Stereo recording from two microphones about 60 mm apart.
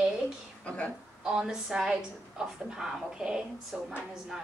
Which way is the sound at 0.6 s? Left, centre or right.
Centre.